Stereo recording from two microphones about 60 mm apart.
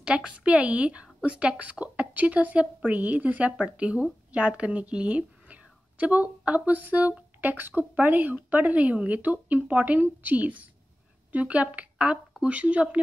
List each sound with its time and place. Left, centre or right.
0.0 s a woman's voice: centre